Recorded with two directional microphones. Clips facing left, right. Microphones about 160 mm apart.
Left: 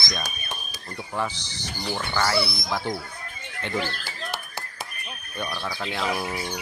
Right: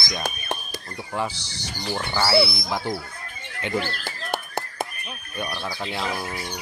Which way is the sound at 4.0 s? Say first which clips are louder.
Right 4 dB; 50° right (ahead or behind).